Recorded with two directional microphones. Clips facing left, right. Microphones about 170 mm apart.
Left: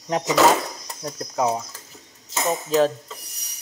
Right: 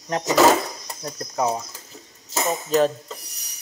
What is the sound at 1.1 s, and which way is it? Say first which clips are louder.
Rub: left 1 dB; 5° left (ahead or behind).